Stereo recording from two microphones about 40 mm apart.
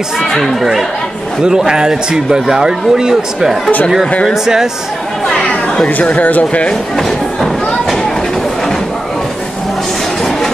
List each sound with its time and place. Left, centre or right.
0.2 s speech: centre
1.7 s a man's voice: centre
6.2 s speech: left